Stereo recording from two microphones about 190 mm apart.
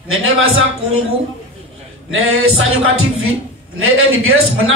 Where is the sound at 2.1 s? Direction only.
90° right.